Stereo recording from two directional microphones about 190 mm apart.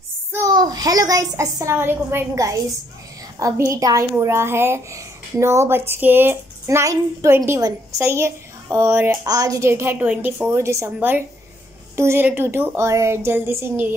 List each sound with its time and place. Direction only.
0.3 s a child's voice: 20° right (ahead or behind)